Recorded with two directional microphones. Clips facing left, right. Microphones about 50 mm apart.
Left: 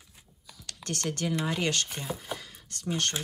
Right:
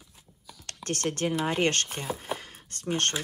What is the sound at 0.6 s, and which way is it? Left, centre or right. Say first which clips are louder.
Speech: right 3 dB; right.